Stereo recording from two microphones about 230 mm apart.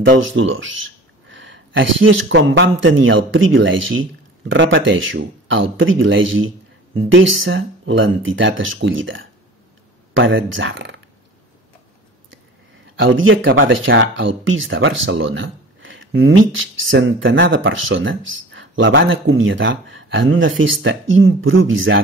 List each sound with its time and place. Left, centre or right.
0.2 s speech: right
13.0 s speech: right